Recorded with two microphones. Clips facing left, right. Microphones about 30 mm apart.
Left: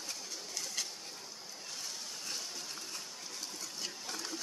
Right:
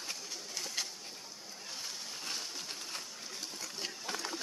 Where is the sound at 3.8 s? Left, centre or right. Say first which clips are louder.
Right 3 dB; right.